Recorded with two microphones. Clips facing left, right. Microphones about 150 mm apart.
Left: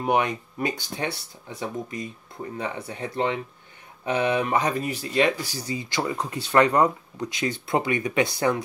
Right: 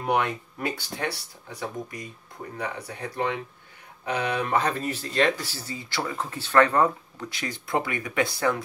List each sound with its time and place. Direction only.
0.0 s speech: 20° left (ahead or behind)